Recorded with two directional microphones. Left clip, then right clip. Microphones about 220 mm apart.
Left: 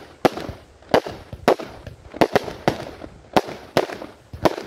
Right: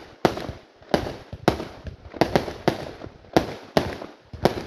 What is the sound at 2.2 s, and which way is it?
Fireworks, 65° left (ahead or behind).